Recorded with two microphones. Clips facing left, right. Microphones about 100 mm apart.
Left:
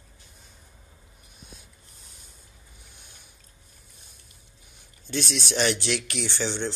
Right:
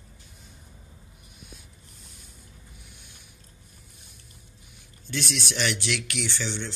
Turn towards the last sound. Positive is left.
turn(degrees=35)  # may be behind; listen again after turning